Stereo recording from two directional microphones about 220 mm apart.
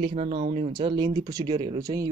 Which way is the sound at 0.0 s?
30° right (ahead or behind).